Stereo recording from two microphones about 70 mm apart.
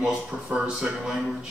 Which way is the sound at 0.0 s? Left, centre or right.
Centre.